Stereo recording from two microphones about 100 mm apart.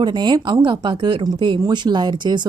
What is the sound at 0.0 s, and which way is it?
A woman's voice, 45° right (ahead or behind).